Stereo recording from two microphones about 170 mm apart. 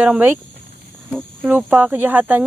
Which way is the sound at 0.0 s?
10° right (ahead or behind).